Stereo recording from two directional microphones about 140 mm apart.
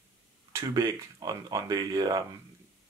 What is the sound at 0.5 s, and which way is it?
Speech, 25° right (ahead or behind).